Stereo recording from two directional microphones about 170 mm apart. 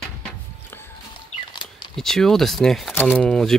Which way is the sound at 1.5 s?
25° left (ahead or behind).